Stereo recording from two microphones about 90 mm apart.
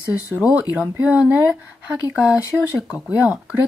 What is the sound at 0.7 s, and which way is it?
Speech, 15° right (ahead or behind).